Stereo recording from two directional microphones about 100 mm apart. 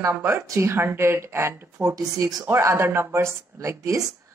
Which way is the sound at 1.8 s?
35° right (ahead or behind).